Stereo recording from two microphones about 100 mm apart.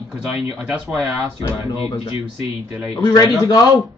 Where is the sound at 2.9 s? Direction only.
40° left (ahead or behind).